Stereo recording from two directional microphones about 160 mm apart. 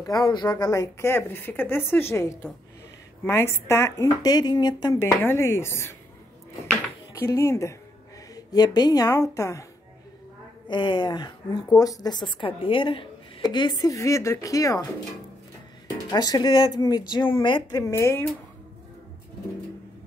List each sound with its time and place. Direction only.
0.0 s speech: 25° left (ahead or behind)
7.2 s a woman's voice: 20° left (ahead or behind)
10.7 s a woman's voice: 30° left (ahead or behind)
16.1 s a woman's voice: 25° left (ahead or behind)